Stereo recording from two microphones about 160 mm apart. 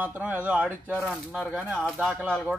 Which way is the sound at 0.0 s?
10° right (ahead or behind).